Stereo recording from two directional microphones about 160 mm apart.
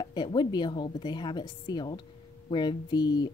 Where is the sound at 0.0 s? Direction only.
30° left (ahead or behind).